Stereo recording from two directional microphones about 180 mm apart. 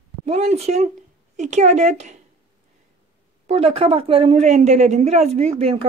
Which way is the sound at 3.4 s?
35° right (ahead or behind).